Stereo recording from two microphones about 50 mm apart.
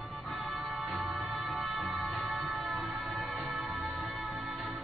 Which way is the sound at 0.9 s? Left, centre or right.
Centre.